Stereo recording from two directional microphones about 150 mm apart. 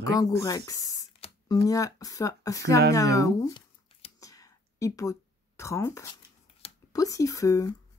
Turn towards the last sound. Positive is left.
turn(degrees=20)  # may be behind; listen again after turning